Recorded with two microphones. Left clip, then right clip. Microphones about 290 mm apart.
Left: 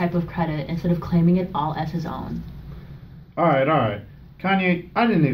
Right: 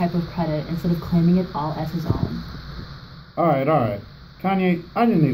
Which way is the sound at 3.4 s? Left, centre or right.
Left.